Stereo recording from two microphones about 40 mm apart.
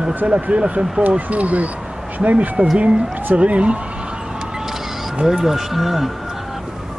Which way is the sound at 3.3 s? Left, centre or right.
Right.